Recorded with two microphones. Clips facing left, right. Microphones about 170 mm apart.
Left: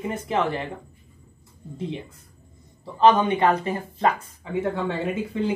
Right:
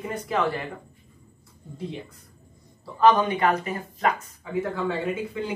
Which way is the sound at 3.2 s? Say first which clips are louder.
Left 3 dB; 30° left (ahead or behind).